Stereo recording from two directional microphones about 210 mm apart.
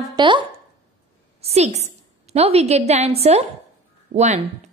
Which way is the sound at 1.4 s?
30° right (ahead or behind).